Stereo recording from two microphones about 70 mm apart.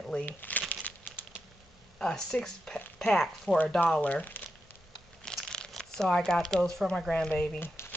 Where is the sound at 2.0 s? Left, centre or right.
Centre.